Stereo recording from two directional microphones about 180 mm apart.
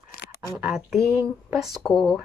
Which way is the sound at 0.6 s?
5° right (ahead or behind).